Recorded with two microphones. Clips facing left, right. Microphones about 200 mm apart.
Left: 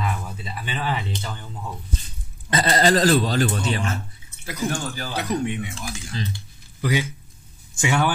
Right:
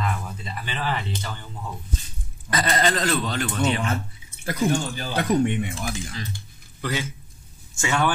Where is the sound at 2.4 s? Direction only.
30° left (ahead or behind).